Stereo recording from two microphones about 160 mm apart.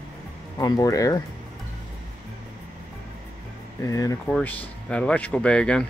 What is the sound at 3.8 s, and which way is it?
Speech, 20° left (ahead or behind).